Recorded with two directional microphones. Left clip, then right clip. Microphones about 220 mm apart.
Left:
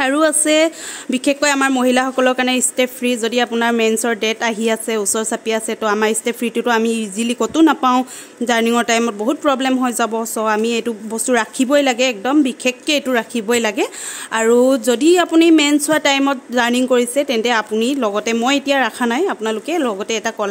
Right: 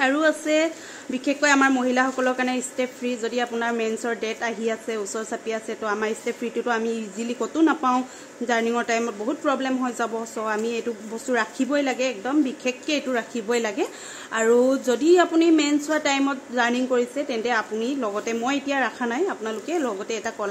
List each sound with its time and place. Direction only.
0.0 s a woman's voice: 55° left (ahead or behind)